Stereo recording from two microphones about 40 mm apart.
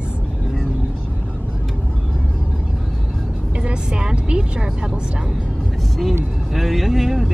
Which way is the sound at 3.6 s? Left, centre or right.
Right.